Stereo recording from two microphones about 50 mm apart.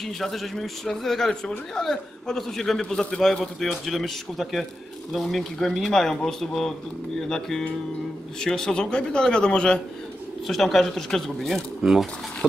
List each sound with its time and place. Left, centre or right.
0.0 s a man's voice: centre
10.4 s speech: centre
11.8 s speech: centre